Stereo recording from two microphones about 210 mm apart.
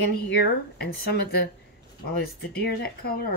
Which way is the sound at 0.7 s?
50° left (ahead or behind).